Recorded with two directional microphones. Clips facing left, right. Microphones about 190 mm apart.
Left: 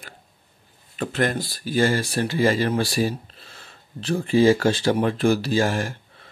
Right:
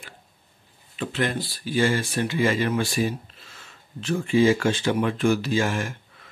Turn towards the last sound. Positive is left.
turn(degrees=35)  # may be behind; listen again after turning